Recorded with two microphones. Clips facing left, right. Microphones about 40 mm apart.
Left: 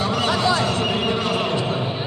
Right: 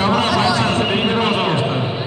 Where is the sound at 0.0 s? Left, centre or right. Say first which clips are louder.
Right 4 dB; right.